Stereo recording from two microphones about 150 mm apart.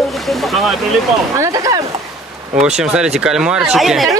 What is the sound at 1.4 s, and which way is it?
Speech, 25° right (ahead or behind).